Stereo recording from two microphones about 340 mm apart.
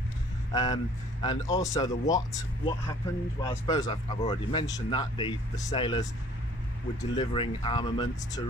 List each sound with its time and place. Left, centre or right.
0.5 s speech: centre